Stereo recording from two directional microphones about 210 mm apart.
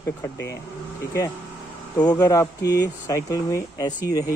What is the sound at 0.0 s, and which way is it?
Speech, 15° left (ahead or behind).